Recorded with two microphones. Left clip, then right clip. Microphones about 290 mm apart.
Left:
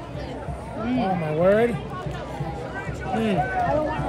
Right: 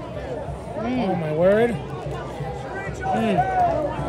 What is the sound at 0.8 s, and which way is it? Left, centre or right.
Speech, right.